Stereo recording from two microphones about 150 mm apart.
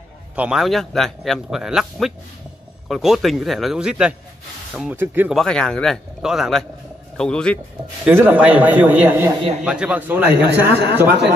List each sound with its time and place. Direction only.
0.4 s a man's voice: 5° right (ahead or behind)
5.3 s a man's voice: 5° left (ahead or behind)
8.0 s a man's voice: 15° right (ahead or behind)
9.4 s a man's voice: 45° right (ahead or behind)
9.7 s a man's voice: 5° right (ahead or behind)